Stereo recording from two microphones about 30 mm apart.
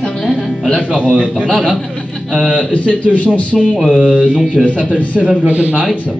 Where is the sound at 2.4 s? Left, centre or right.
Left.